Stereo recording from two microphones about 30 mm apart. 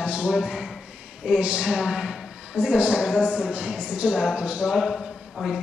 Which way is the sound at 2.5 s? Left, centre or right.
Right.